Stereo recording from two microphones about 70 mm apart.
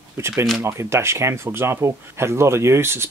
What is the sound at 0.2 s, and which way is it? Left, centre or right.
Speech, right.